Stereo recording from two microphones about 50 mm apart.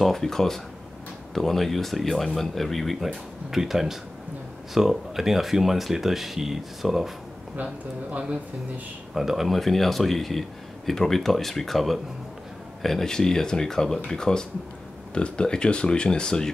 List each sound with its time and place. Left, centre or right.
0.0 s speech: centre
7.5 s speech: right
9.1 s speech: centre